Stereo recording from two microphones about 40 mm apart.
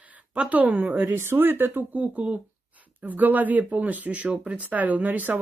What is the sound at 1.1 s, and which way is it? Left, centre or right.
Speech, right.